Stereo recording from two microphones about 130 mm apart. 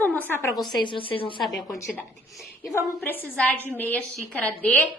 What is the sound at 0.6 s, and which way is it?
Speech, 40° left (ahead or behind).